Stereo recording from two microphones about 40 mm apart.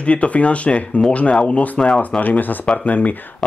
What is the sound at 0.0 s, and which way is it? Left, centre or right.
Speech, left.